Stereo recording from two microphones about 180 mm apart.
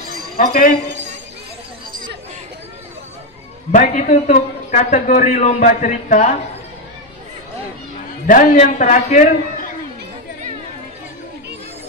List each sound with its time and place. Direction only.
0.4 s a man's voice: 50° left (ahead or behind)
3.7 s a man's voice: 45° left (ahead or behind)
8.3 s a man's voice: 45° left (ahead or behind)